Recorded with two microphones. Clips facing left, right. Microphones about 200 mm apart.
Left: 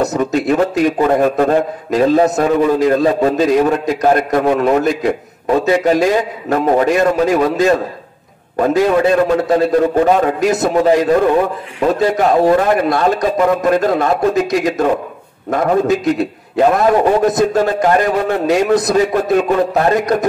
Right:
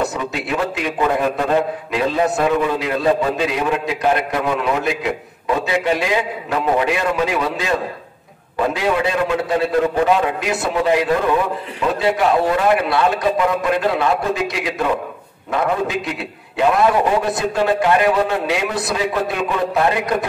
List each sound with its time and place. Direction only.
0.0 s a man's voice: 40° left (ahead or behind)